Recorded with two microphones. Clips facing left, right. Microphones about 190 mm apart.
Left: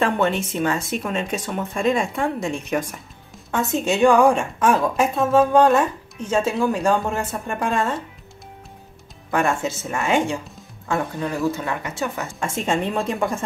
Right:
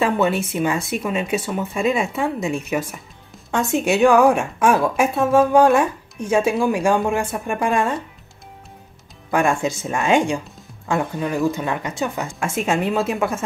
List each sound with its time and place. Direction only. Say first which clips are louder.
0.0 s a woman's voice: right 2 dB; 5° right (ahead or behind)
9.3 s a woman's voice: right 2 dB; 15° right (ahead or behind)